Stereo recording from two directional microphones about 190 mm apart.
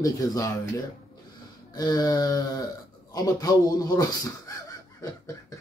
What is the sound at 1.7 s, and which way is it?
A man's voice, 20° left (ahead or behind).